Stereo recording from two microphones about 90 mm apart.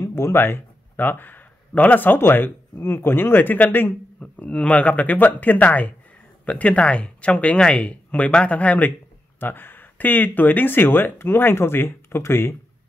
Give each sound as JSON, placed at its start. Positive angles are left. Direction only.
{"t": 0.0, "sound": "speech", "side_deg": 30}